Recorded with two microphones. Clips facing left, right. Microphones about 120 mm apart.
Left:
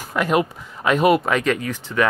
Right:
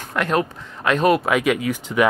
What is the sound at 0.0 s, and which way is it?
Speech, 5° left (ahead or behind).